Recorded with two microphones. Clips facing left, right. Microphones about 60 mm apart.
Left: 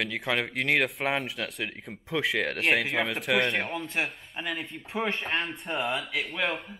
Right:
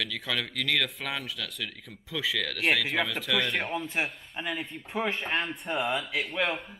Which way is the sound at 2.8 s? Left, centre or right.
Centre.